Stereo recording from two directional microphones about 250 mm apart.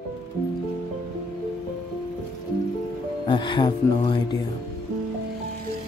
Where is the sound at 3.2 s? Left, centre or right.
Centre.